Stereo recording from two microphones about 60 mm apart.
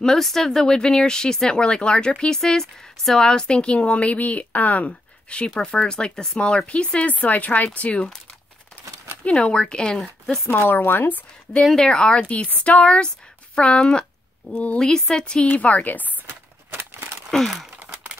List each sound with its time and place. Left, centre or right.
0.0 s speech: centre; by 8.0 s left
9.2 s speech: centre
10.5 s speech: left
11.6 s speech: centre
14.5 s speech: left
14.8 s speech: centre
15.4 s speech: left
17.3 s sigh: centre